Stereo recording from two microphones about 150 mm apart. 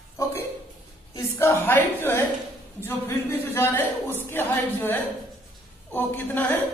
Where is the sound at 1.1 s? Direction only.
15° left (ahead or behind).